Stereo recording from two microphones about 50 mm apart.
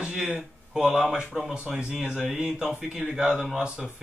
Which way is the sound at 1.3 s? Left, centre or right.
Centre.